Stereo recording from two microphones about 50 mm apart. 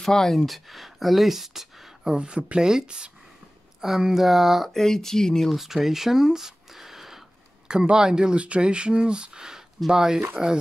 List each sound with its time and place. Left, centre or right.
0.0 s speech: centre
2.1 s speech: right
4.7 s speech: centre
5.6 s a sound: centre
7.9 s speech: centre